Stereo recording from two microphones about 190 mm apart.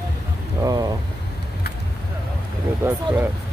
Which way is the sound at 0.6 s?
20° right (ahead or behind).